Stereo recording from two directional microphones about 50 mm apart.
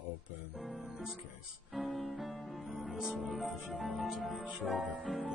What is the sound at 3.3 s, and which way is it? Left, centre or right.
Music, centre.